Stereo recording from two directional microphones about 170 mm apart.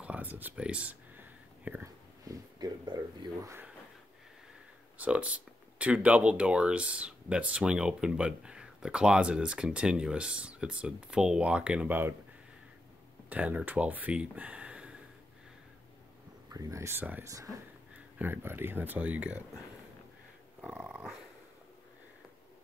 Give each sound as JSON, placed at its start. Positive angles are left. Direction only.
{"t": 0.0, "sound": "whispering", "side_deg": -10}
{"t": 2.2, "sound": "speech", "side_deg": -25}
{"t": 4.9, "sound": "speech", "side_deg": -10}
{"t": 13.3, "sound": "speech", "side_deg": -10}
{"t": 16.4, "sound": "speech", "side_deg": -20}
{"t": 20.6, "sound": "speech", "side_deg": -5}